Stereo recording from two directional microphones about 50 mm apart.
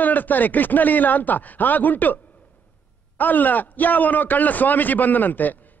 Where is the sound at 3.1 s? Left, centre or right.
Left.